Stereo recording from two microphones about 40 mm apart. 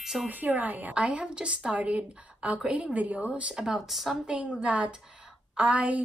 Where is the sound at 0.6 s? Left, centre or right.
Right.